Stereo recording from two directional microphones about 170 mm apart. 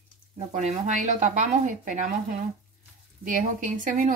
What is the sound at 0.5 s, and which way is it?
A woman's voice, 45° right (ahead or behind).